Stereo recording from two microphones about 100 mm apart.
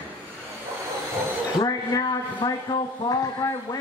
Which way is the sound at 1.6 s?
40° left (ahead or behind).